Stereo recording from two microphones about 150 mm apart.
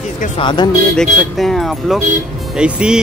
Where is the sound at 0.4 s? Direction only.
30° left (ahead or behind).